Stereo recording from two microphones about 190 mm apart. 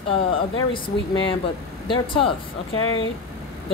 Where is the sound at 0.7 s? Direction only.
25° left (ahead or behind).